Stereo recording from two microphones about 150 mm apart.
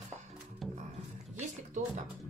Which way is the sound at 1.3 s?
50° right (ahead or behind).